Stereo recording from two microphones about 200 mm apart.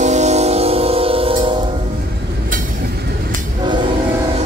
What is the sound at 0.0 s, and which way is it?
Music, 35° right (ahead or behind).